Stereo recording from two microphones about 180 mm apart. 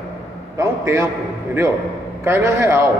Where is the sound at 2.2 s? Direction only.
15° right (ahead or behind).